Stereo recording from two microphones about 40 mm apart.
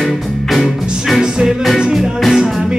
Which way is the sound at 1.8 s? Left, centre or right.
Centre.